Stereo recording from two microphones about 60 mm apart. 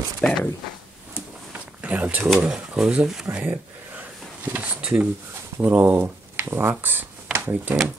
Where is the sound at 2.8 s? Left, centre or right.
Centre.